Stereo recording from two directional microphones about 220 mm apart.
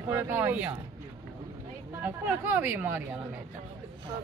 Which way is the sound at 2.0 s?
10° right (ahead or behind).